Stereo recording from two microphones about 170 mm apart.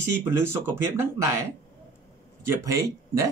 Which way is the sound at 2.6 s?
20° right (ahead or behind).